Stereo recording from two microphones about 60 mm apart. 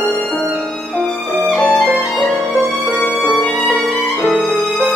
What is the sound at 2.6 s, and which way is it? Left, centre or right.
Music, centre.